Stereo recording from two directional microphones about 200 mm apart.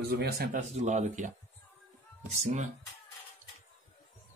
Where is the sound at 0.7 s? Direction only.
35° right (ahead or behind).